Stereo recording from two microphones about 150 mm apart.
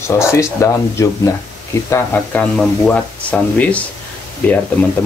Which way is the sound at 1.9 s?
10° left (ahead or behind).